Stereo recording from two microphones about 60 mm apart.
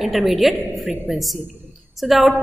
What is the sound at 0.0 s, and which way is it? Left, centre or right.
A woman's voice, centre.